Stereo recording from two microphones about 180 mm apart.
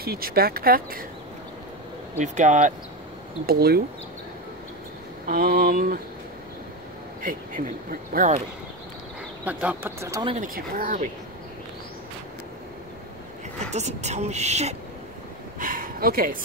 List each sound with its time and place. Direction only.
0.0 s speech: 55° right (ahead or behind)
2.1 s speech: 40° right (ahead or behind)
3.4 s speech: 60° right (ahead or behind)
5.2 s speech: 55° right (ahead or behind)
7.2 s speech: 50° right (ahead or behind)
9.4 s speech: 10° right (ahead or behind)
10.4 s speech: 50° right (ahead or behind)
13.6 s speech: 40° right (ahead or behind)
15.6 s a sound: 50° right (ahead or behind)